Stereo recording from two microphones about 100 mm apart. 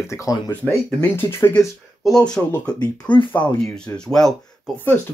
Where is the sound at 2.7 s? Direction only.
15° left (ahead or behind).